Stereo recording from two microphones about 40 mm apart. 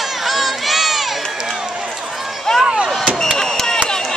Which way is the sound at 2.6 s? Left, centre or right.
Centre.